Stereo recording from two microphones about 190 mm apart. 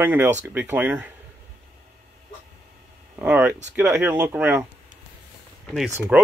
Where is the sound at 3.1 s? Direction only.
10° right (ahead or behind).